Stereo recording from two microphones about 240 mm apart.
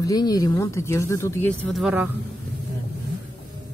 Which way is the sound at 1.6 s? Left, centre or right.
Centre.